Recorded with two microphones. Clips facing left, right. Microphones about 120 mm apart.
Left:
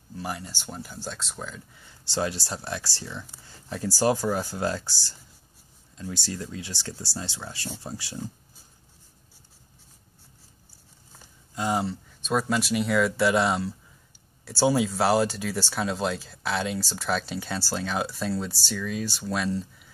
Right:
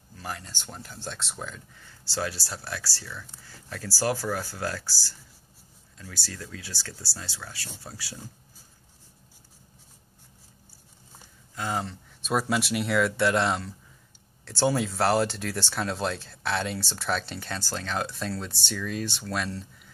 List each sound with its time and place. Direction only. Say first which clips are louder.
0.2 s speech: left 3 dB; 10° left (ahead or behind)
1.8 s speech: left 3 dB; 20° left (ahead or behind)
11.5 s speech: left 4 dB; 15° left (ahead or behind)
12.2 s speech: left 1 dB; 5° right (ahead or behind)